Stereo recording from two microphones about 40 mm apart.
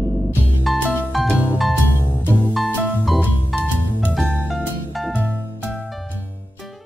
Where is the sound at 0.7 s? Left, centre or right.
Centre.